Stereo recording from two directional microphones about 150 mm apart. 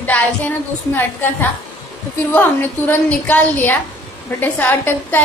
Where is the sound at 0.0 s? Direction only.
15° left (ahead or behind).